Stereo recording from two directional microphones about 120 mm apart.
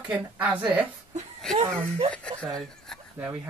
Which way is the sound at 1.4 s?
5° left (ahead or behind).